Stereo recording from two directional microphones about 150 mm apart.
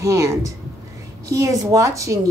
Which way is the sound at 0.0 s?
20° right (ahead or behind).